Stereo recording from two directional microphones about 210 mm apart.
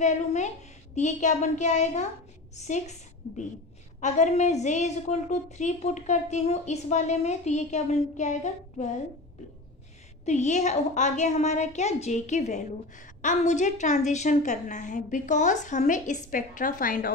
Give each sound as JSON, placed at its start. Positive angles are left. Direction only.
{"t": 0.0, "sound": "a woman's voice", "side_deg": 35}
{"t": 10.2, "sound": "a woman's voice", "side_deg": 35}